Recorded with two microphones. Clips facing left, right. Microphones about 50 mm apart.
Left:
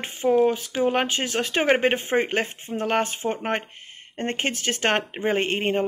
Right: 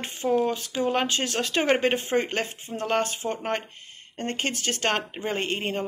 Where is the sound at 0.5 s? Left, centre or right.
Left.